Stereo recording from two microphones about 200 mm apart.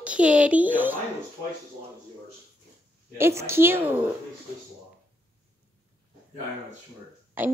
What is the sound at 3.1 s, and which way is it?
Speech, 10° right (ahead or behind).